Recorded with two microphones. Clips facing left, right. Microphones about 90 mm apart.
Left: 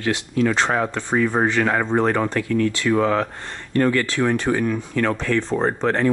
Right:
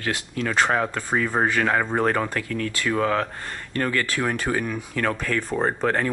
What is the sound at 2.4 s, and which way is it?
Speech, 15° left (ahead or behind).